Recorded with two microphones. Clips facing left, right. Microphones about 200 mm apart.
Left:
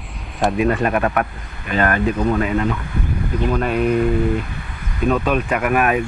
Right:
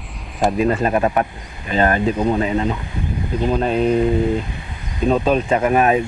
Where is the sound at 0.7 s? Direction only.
25° right (ahead or behind).